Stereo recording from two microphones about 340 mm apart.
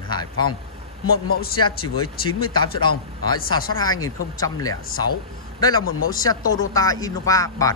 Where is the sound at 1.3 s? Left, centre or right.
Left.